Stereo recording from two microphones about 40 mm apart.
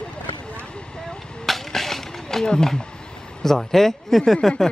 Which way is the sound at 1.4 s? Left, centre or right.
Centre.